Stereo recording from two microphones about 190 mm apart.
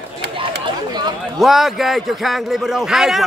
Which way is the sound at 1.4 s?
Centre (ahead or behind).